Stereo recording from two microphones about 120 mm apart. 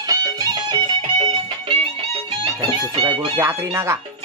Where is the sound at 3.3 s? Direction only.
20° right (ahead or behind).